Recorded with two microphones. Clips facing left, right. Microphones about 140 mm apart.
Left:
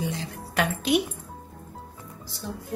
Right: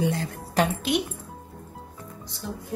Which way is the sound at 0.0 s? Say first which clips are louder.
Right 5 dB; 55° right (ahead or behind).